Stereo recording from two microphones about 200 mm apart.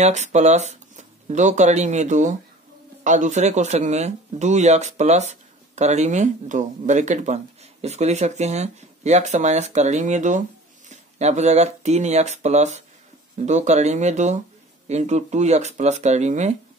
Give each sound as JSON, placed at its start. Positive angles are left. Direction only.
{"t": 0.0, "sound": "speech", "side_deg": -35}